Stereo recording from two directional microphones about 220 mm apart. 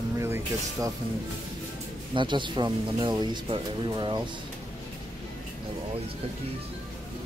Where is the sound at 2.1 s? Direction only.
20° right (ahead or behind).